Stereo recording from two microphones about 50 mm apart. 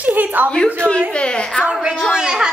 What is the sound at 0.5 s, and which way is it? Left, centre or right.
A woman's voice, left.